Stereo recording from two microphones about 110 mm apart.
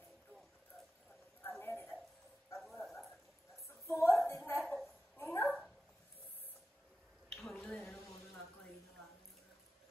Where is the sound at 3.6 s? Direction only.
25° left (ahead or behind).